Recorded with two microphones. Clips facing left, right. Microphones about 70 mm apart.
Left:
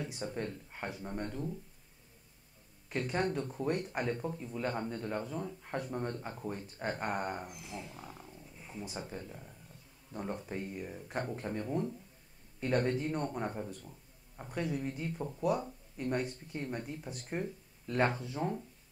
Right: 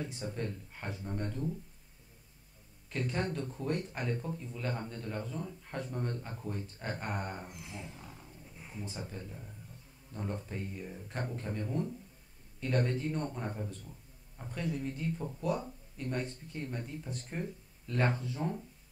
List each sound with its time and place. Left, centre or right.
0.2 s speech: centre
2.9 s speech: left
10.1 s a man's voice: centre